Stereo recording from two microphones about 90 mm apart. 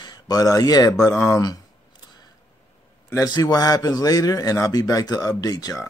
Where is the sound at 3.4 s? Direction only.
45° left (ahead or behind).